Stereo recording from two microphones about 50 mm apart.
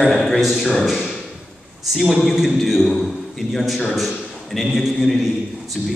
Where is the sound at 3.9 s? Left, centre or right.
Centre.